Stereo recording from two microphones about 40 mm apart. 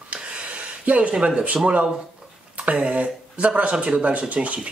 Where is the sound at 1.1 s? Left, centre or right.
Right.